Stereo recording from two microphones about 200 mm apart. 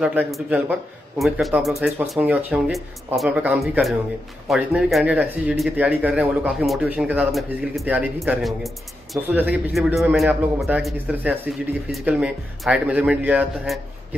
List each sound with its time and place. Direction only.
0.0 s a man's voice: 5° right (ahead or behind)